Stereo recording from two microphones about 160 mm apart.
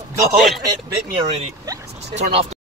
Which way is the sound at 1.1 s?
40° right (ahead or behind).